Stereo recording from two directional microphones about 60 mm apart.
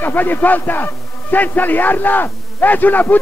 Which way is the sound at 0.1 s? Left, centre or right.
Left.